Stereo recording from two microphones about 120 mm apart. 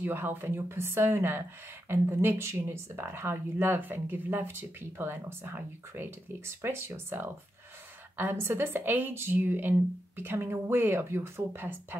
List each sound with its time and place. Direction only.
0.0 s speech: 15° right (ahead or behind)